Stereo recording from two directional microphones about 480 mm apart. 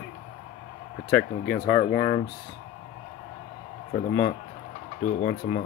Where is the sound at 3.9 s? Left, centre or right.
Left.